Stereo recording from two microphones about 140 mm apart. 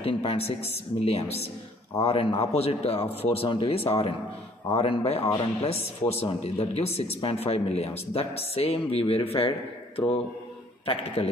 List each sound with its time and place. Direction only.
0.0 s speech: 45° left (ahead or behind)